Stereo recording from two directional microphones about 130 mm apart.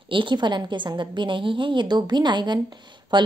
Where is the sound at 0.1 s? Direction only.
40° right (ahead or behind).